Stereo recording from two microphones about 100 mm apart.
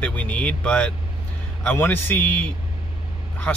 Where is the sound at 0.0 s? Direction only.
10° left (ahead or behind).